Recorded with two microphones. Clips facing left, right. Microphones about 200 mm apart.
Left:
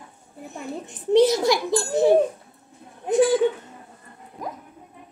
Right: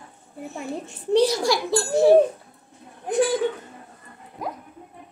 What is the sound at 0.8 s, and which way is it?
A child's voice, 20° left (ahead or behind).